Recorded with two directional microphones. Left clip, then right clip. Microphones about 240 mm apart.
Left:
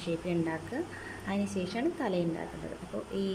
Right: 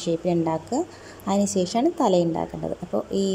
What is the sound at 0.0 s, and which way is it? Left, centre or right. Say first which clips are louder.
A woman's voice: right 9 dB; right.